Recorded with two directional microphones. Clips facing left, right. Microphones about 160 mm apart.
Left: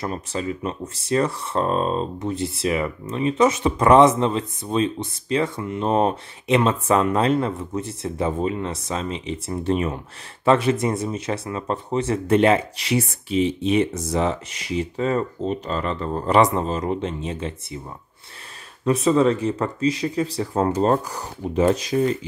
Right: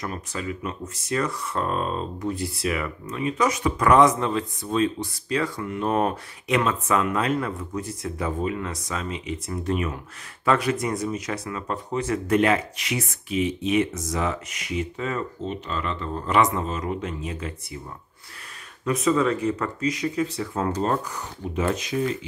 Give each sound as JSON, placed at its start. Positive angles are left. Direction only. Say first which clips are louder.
{"t": 0.0, "sound": "speech", "louder": "left 4 dB", "side_deg": 30}
{"t": 18.9, "sound": "speech", "louder": "left 4 dB", "side_deg": 30}